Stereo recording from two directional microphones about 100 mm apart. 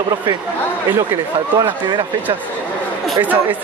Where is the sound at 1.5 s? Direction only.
50° right (ahead or behind).